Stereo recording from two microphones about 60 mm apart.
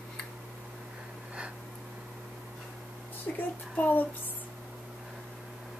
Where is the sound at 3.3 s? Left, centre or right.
Centre.